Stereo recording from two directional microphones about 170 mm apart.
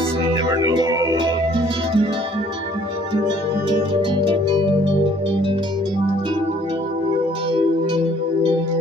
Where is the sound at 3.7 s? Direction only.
25° right (ahead or behind).